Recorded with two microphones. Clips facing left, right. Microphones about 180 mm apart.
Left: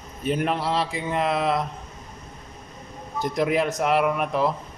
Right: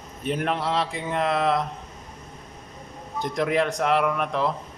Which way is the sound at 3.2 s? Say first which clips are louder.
Left 1 dB; 5° left (ahead or behind).